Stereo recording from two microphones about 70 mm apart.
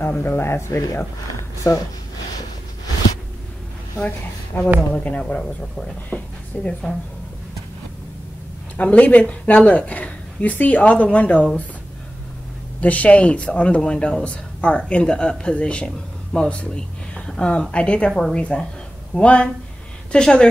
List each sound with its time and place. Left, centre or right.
0.0 s speech: left
1.6 s speech: left
4.5 s speech: left
8.7 s speech: centre
12.8 s speech: left